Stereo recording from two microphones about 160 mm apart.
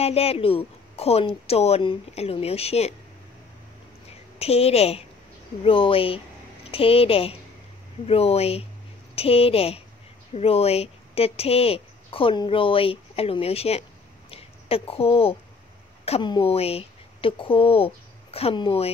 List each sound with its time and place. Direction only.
0.0 s speech: 40° left (ahead or behind)
4.4 s speech: 40° left (ahead or behind)